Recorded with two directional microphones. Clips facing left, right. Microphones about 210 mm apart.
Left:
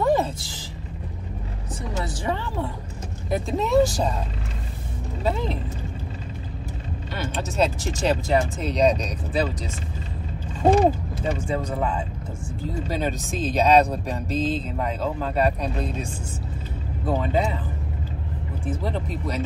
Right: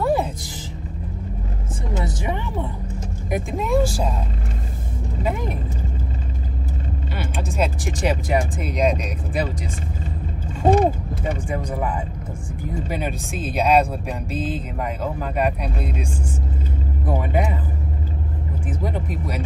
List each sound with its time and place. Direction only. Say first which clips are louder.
0.0 s music: even; 10° right (ahead or behind)
2.0 s music: right 1 dB; 20° right (ahead or behind)
3.3 s speech: even; 15° right (ahead or behind)
5.2 s speech: even; 15° right (ahead or behind)
7.2 s speech: left 1 dB; 10° right (ahead or behind)
11.3 s speech: even; 15° right (ahead or behind)
18.7 s speech: even; 15° right (ahead or behind)